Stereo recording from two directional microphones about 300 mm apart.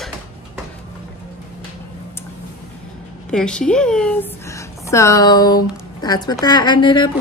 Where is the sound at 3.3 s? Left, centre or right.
Centre.